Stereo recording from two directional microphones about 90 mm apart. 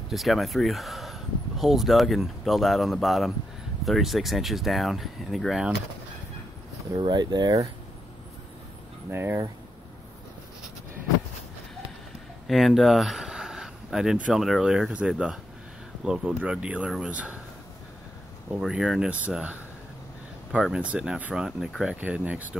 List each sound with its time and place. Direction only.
0.1 s speech: centre (ahead or behind)
7.0 s speech: 55° right (ahead or behind)
9.1 s speech: 25° right (ahead or behind)
12.4 s speech: centre (ahead or behind)
18.7 s speech: 5° right (ahead or behind)
20.6 s speech: 10° right (ahead or behind)
21.9 s speech: 15° right (ahead or behind)